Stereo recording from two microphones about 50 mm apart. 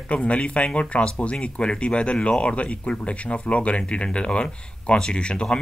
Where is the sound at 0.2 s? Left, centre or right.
Left.